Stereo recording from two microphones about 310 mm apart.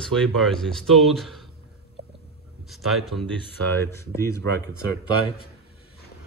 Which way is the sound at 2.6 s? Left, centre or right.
Centre.